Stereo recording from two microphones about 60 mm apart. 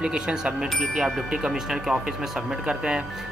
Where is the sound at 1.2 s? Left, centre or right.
Centre.